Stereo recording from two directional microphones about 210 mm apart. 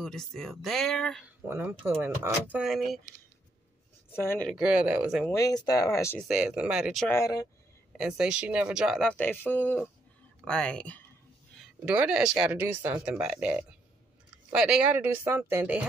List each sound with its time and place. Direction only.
0.0 s speech: centre (ahead or behind)
1.5 s speech: 10° right (ahead or behind)
4.1 s speech: 10° left (ahead or behind)
4.5 s speech: 5° right (ahead or behind)
5.3 s speech: 15° left (ahead or behind)
6.2 s speech: 5° right (ahead or behind)
7.1 s speech: 15° left (ahead or behind)
8.0 s speech: 5° right (ahead or behind)
11.8 s speech: 5° right (ahead or behind)